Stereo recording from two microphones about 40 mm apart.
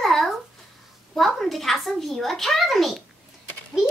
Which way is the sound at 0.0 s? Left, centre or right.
Centre.